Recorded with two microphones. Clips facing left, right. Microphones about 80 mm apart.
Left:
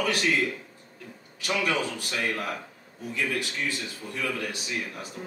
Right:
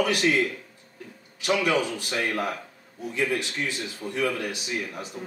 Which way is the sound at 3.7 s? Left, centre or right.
Centre.